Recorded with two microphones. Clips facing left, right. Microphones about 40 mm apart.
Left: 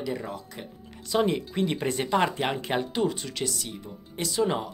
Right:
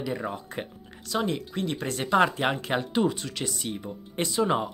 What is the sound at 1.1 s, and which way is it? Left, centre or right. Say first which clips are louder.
Speech: left 3 dB; centre.